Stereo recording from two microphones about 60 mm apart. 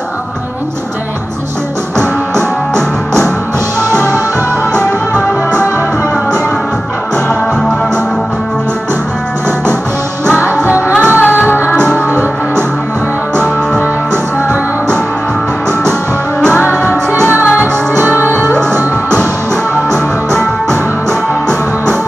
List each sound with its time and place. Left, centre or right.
10.5 s music: right
11.1 s music: left
13.4 s music: right
17.6 s music: right